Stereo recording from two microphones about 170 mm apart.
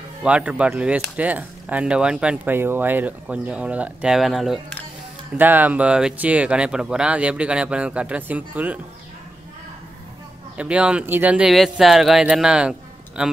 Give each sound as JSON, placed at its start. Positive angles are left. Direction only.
{"t": 0.2, "sound": "speech", "side_deg": -5}
{"t": 10.6, "sound": "speech", "side_deg": -5}